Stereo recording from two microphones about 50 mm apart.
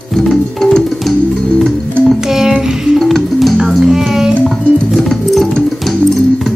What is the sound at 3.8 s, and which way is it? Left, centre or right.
Music, centre.